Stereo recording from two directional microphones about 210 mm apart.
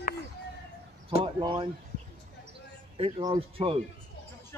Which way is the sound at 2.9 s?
25° right (ahead or behind).